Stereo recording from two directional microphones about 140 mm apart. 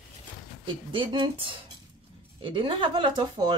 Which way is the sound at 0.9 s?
35° right (ahead or behind).